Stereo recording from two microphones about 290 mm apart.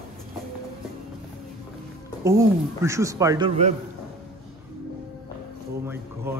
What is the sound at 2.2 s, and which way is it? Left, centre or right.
Speech, centre.